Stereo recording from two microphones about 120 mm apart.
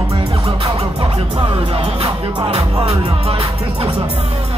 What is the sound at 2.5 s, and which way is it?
Speech, 60° right (ahead or behind).